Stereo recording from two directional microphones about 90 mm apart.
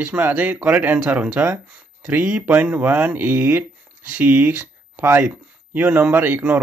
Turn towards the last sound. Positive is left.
turn(degrees=-20)  # may be behind; listen again after turning